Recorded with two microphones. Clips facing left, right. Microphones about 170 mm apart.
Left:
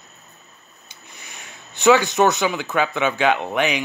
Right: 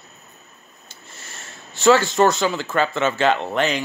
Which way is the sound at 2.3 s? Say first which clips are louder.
Even; 15° left (ahead or behind).